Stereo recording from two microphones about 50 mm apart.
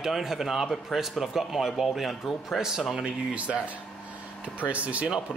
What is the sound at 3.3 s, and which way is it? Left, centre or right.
Speech, right.